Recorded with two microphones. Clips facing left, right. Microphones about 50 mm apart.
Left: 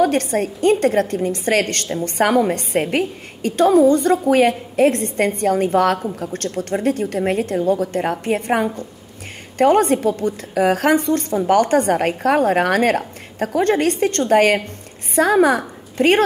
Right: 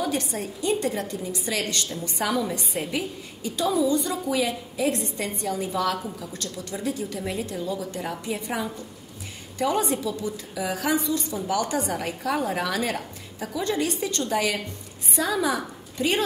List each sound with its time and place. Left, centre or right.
0.0 s a woman's voice: left